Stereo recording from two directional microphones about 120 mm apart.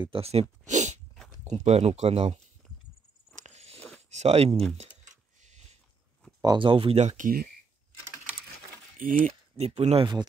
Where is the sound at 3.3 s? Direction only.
75° right (ahead or behind).